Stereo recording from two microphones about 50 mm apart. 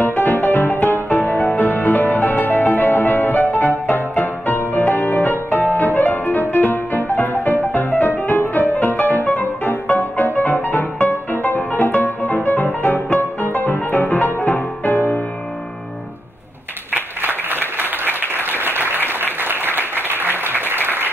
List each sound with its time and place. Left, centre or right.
0.0 s music: left
16.9 s applause: right